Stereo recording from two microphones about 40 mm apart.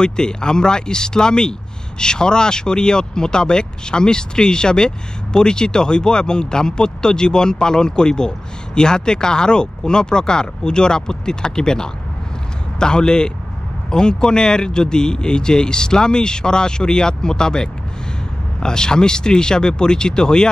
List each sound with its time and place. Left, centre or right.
0.0 s speech: centre